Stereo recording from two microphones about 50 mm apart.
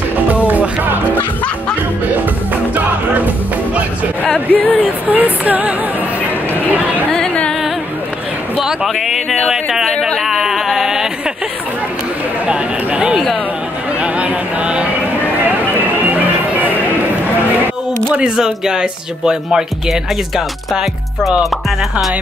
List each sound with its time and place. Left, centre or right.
0.3 s music: right
2.7 s music: right
4.2 s speech: left
5.1 s speech: right
6.5 s chatter: right
8.8 s a sound: centre
9.8 s a sound: centre
10.2 s a sound: centre
12.4 s a sound: right
14.0 s music: right
16.1 s music: right
18.3 s speech: centre